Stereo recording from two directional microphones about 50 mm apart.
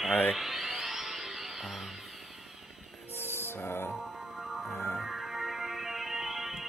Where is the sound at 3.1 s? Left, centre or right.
Left.